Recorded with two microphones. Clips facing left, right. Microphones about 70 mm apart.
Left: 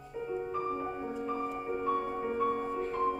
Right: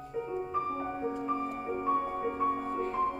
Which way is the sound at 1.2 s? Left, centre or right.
Centre.